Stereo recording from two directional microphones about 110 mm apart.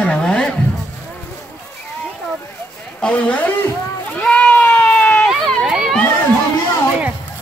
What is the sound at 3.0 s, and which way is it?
Speech, 10° left (ahead or behind).